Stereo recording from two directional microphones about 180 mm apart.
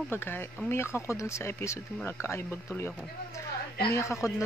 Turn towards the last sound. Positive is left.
turn(degrees=15)  # may be behind; listen again after turning